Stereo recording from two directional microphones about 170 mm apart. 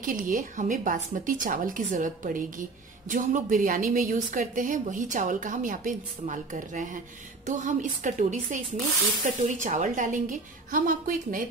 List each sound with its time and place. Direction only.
0.0 s a woman's voice: 50° right (ahead or behind)